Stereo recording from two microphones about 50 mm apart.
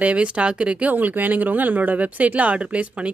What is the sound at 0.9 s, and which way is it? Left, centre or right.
Speech, right.